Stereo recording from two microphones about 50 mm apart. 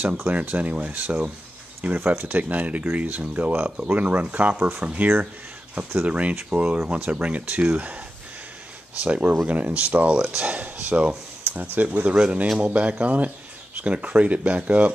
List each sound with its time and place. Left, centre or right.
0.3 s speech: right
9.0 s speech: right